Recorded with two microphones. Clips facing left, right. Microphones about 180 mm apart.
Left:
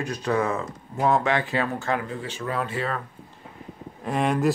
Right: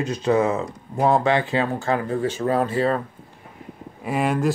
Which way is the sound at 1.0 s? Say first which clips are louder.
Right 3 dB; 30° right (ahead or behind).